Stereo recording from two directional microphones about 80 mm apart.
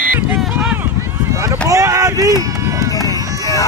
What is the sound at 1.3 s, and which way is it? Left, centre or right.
Run, right.